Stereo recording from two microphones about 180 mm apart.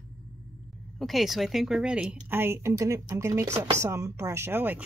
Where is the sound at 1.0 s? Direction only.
Centre (ahead or behind).